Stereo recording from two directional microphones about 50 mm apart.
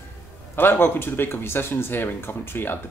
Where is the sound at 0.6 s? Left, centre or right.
Left.